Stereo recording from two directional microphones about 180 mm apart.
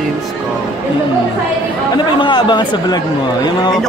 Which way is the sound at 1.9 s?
25° left (ahead or behind).